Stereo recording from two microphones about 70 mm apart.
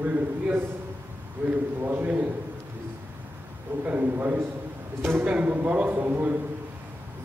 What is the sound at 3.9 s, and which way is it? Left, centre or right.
A man's voice, right.